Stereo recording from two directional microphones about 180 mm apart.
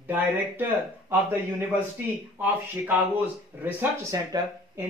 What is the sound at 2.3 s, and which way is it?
Speech, 10° right (ahead or behind).